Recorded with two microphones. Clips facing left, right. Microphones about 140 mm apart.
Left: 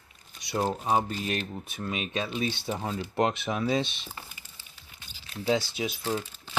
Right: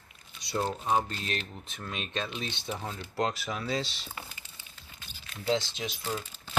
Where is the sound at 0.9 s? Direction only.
10° left (ahead or behind).